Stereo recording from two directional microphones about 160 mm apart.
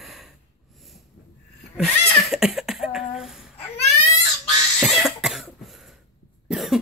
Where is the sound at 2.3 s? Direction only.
Centre (ahead or behind).